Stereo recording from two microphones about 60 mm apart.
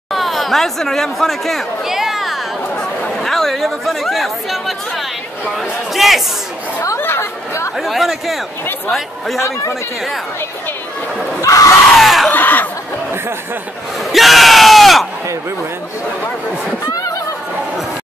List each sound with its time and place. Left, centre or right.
0.1 s chatter: centre
2.7 s chatter: left
3.2 s speech: centre
7.0 s chatter: left
7.7 s speech: centre
9.4 s speech: left
11.4 s speech: left
12.0 s a sound: centre
12.3 s snicker: left
14.1 s speech: centre